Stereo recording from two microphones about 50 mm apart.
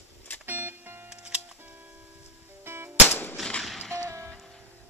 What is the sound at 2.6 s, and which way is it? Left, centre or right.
Music, right.